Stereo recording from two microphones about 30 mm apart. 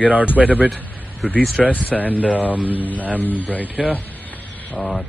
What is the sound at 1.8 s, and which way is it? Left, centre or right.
Speech, left.